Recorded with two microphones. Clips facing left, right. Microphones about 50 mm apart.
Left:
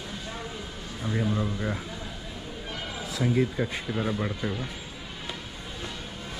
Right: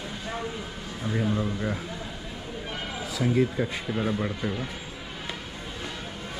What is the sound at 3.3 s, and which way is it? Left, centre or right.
Speech, centre.